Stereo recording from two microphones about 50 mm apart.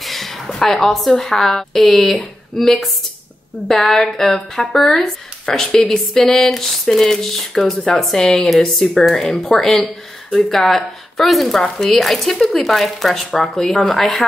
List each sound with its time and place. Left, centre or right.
0.0 s a woman's voice: centre
11.6 s speech: centre
11.9 s speech: centre